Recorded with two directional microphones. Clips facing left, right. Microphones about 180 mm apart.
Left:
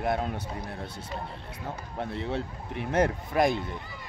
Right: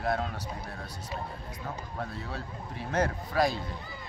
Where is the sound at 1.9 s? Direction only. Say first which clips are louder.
Left 9 dB; 25° left (ahead or behind).